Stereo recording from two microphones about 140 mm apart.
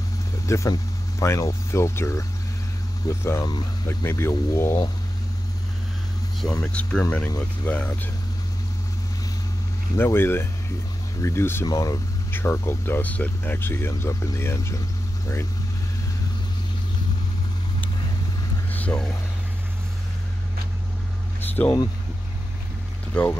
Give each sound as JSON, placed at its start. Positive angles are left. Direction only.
{"t": 0.5, "sound": "speech", "side_deg": 20}
{"t": 6.6, "sound": "speech", "side_deg": 10}
{"t": 9.9, "sound": "speech", "side_deg": 15}
{"t": 18.7, "sound": "vehicle", "side_deg": 10}
{"t": 21.4, "sound": "a sound", "side_deg": 10}
{"t": 23.2, "sound": "speech", "side_deg": 5}